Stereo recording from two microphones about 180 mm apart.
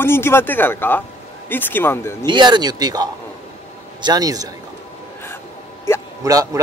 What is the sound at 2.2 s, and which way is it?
Speech, 25° right (ahead or behind).